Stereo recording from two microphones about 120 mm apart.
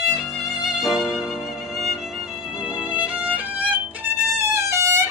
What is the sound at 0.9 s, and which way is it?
Violin, 5° right (ahead or behind).